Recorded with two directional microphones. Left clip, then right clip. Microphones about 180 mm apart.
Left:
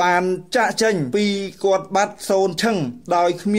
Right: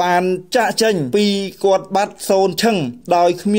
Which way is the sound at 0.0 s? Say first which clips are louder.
Right 2 dB; 20° right (ahead or behind).